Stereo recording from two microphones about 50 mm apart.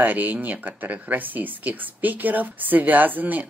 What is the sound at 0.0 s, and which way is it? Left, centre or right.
Speech, right.